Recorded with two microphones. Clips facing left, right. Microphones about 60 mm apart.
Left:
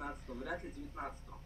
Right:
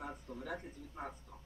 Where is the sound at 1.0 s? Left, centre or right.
Left.